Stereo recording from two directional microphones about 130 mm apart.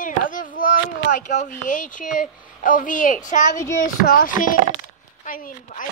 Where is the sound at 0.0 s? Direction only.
90° left.